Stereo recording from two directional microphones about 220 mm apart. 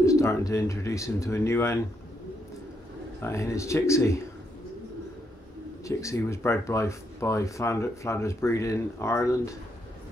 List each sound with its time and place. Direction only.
0.0 s speech: 15° left (ahead or behind)
3.2 s speech: 10° left (ahead or behind)
5.9 s speech: 15° left (ahead or behind)